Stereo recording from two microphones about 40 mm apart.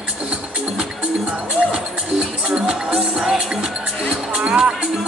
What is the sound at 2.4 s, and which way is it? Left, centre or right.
Music, right.